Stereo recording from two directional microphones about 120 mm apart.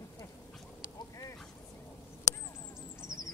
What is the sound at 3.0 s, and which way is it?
Owl, 30° left (ahead or behind).